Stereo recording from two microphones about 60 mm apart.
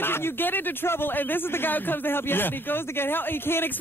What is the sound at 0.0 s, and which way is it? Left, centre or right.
Speech, left.